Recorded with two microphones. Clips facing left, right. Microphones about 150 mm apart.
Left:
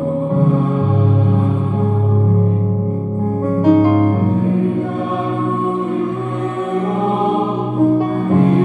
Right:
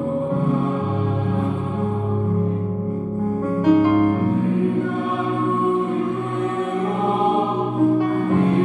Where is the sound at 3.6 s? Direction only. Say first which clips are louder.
Left 3 dB; 30° left (ahead or behind).